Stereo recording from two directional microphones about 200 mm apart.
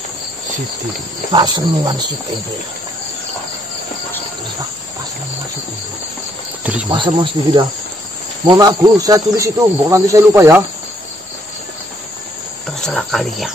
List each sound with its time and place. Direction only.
1.3 s speech: 20° right (ahead or behind)
6.6 s speech: 5° right (ahead or behind)
6.9 s speech: 25° right (ahead or behind)
12.8 s speech: centre (ahead or behind)